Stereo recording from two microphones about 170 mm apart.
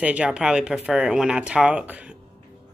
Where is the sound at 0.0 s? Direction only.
5° right (ahead or behind).